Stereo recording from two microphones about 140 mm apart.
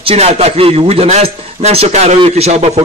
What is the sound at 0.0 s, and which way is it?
A man's voice, 50° right (ahead or behind).